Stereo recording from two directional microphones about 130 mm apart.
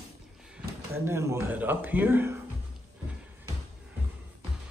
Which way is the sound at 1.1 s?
20° right (ahead or behind).